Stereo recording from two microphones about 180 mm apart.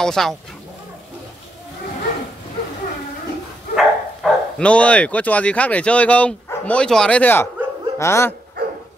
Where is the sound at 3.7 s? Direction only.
Centre (ahead or behind).